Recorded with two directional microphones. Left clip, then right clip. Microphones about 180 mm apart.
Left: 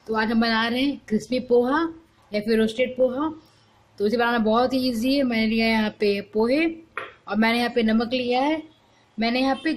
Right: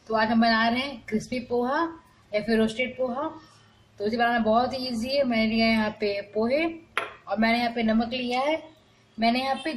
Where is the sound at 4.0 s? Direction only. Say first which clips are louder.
Left 2 dB; 45° left (ahead or behind).